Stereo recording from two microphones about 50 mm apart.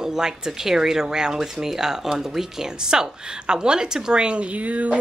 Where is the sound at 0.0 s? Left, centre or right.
Centre.